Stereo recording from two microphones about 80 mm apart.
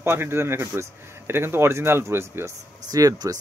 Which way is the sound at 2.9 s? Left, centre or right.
Right.